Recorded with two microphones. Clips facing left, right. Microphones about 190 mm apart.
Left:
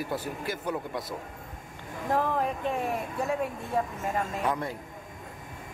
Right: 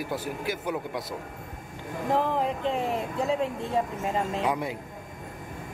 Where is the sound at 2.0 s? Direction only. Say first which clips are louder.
Right 2 dB; 20° right (ahead or behind).